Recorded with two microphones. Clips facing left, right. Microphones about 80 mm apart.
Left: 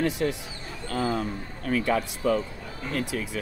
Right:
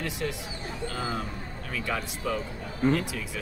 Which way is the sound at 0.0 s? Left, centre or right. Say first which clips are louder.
Left 6 dB; left.